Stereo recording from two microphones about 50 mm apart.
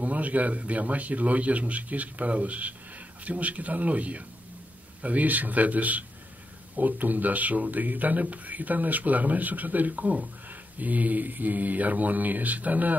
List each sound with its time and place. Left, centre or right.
0.0 s speech: right